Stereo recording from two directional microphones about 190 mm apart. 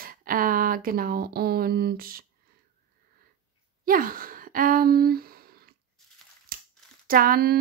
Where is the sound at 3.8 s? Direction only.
45° right (ahead or behind).